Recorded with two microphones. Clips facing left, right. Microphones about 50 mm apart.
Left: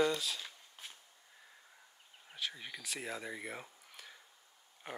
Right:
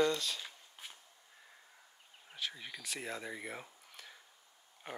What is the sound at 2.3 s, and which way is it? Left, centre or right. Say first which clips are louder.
Speech: even; centre.